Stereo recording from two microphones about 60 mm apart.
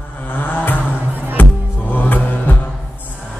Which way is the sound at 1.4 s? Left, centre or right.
Left.